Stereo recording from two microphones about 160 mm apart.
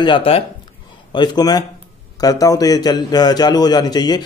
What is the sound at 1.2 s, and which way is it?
A man's voice, 25° left (ahead or behind).